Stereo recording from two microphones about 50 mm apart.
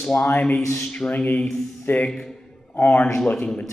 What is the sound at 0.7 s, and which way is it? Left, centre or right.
Speech, centre.